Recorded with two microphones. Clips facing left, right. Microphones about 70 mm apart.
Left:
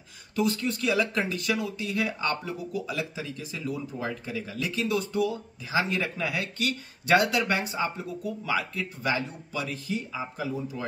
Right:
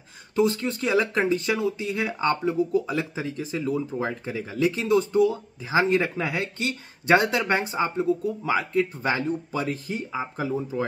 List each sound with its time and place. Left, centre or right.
0.4 s speech: right